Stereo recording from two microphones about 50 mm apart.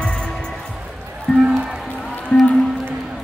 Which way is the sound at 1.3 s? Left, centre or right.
Centre.